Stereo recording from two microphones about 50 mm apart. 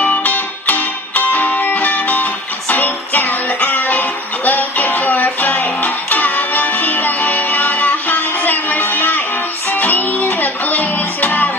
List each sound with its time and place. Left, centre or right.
0.0 s music: left